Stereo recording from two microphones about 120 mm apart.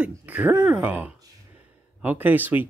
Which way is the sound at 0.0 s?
15° right (ahead or behind).